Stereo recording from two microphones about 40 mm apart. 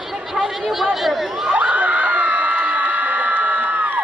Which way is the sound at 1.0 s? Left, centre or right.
Centre.